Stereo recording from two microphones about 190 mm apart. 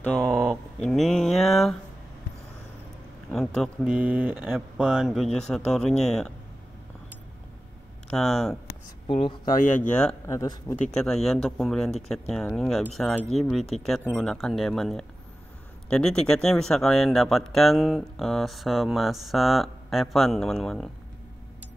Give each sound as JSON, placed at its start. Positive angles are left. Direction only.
{"t": 0.0, "sound": "a sound", "side_deg": 5}
{"t": 0.8, "sound": "mantra", "side_deg": 0}
{"t": 3.3, "sound": "speech", "side_deg": 0}
{"t": 8.2, "sound": "speech", "side_deg": 0}
{"t": 9.0, "sound": "speech", "side_deg": 25}
{"t": 9.5, "sound": "speech", "side_deg": 45}
{"t": 9.8, "sound": "speech", "side_deg": 5}
{"t": 10.3, "sound": "speech", "side_deg": 20}
{"t": 10.9, "sound": "speech", "side_deg": 0}